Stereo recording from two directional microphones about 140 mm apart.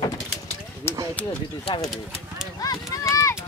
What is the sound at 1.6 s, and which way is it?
Speech, 35° left (ahead or behind).